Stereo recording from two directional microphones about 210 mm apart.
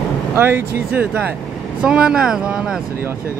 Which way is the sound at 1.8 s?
5° right (ahead or behind).